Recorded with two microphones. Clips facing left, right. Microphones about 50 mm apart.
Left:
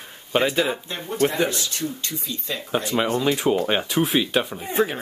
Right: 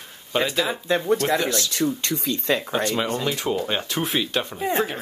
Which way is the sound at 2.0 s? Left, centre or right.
Right.